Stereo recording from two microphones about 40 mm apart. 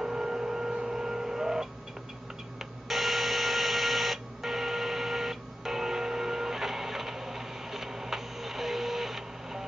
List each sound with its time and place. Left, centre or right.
0.0 s music: centre
2.6 s telephone: centre